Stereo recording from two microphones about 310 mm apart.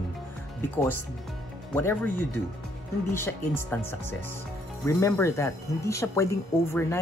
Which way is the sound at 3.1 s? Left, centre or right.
Centre.